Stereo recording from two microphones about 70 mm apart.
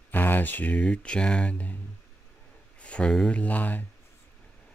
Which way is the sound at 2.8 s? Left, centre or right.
Centre.